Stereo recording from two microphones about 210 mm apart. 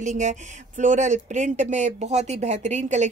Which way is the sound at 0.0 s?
35° right (ahead or behind).